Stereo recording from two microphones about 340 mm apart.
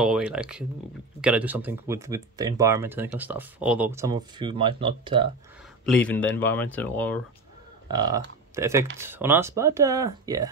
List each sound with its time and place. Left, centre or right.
0.0 s speech: centre
5.9 s speech: centre
7.9 s speech: centre